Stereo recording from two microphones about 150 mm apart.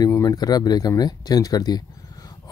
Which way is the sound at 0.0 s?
20° left (ahead or behind).